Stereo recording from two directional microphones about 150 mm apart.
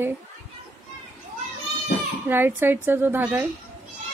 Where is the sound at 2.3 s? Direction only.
15° right (ahead or behind).